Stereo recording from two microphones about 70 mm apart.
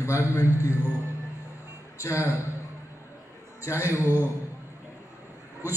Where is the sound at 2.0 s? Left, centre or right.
Left.